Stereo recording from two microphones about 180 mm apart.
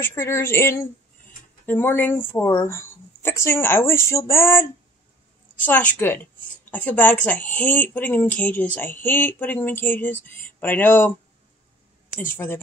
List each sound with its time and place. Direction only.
0.0 s speech: 15° left (ahead or behind)
12.3 s speech: 10° left (ahead or behind)